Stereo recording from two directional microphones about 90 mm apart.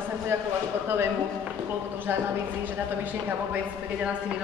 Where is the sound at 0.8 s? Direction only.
25° right (ahead or behind).